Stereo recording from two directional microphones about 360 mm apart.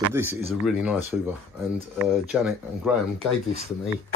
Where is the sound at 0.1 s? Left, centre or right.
Centre.